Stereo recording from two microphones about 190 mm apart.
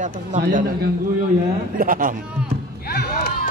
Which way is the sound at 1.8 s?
45° right (ahead or behind).